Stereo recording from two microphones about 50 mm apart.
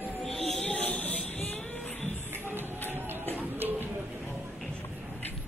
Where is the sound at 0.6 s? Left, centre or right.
Left.